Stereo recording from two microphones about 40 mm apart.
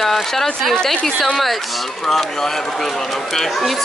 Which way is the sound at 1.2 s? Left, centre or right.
Centre.